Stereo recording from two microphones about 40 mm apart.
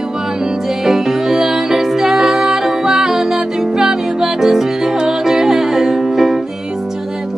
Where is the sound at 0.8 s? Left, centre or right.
Centre.